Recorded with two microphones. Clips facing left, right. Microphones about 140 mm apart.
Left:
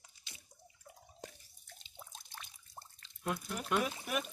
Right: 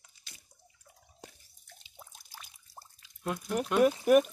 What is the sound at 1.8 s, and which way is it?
Drip, 5° right (ahead or behind).